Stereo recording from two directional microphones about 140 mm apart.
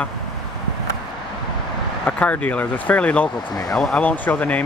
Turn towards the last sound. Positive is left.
turn(degrees=10)  # may be behind; listen again after turning